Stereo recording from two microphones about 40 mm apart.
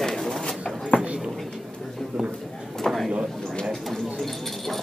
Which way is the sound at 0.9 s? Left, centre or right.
Left.